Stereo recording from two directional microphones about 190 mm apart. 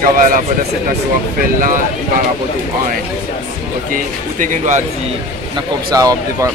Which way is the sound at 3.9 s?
45° right (ahead or behind).